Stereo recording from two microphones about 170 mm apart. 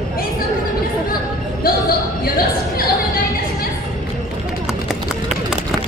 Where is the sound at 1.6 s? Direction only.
60° left (ahead or behind).